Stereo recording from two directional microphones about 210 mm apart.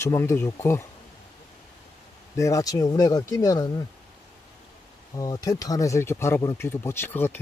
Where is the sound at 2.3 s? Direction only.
15° left (ahead or behind).